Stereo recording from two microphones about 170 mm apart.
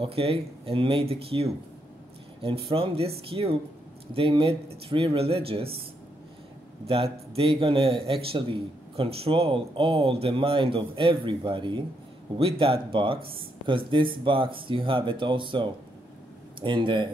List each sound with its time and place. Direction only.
0.0 s a man's voice: 35° right (ahead or behind)
6.9 s a man's voice: 30° right (ahead or behind)